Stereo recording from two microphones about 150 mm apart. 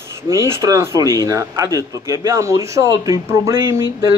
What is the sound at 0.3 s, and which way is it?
Speech, 20° right (ahead or behind).